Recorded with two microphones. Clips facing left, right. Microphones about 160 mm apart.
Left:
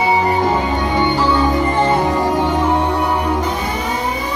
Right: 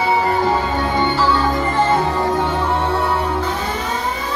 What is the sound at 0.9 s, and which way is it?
Music, 15° left (ahead or behind).